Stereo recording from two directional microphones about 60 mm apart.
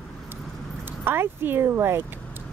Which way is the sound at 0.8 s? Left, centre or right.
Right.